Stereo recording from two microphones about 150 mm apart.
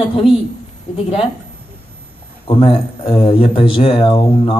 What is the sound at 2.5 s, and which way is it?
Speech, 40° left (ahead or behind).